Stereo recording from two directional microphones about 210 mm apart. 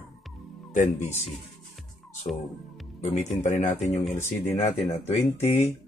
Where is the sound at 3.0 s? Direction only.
35° left (ahead or behind).